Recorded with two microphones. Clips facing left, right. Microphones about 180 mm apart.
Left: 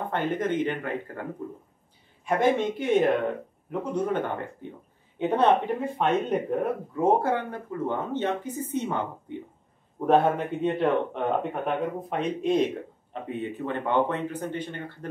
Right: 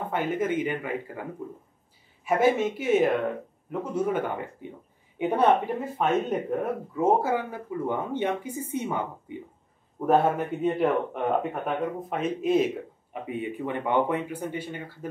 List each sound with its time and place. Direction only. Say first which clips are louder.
0.1 s a man's voice: right 1 dB; 5° right (ahead or behind)
2.2 s a man's voice: right 1 dB; 5° right (ahead or behind)